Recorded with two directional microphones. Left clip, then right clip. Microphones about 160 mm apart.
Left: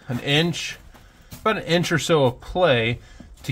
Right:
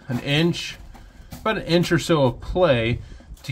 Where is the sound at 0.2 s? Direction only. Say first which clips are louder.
Left 1 dB; 10° left (ahead or behind).